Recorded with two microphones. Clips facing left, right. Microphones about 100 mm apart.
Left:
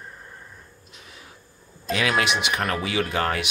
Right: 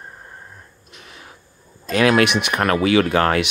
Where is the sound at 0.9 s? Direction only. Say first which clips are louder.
Right 5 dB; 65° right (ahead or behind).